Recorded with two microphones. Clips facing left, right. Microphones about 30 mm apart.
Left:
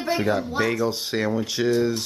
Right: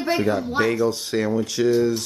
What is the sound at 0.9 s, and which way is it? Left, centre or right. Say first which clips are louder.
Speech: right 2 dB; centre.